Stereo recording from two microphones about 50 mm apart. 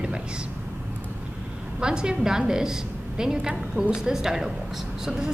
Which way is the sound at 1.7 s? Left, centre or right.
Centre.